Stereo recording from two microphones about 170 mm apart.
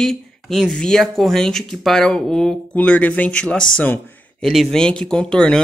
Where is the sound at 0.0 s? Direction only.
5° left (ahead or behind).